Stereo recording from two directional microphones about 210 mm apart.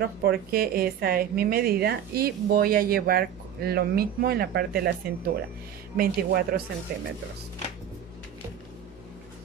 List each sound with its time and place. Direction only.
0.0 s a woman's voice: 45° right (ahead or behind)